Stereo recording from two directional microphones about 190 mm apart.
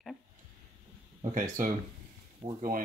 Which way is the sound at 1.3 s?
45° right (ahead or behind).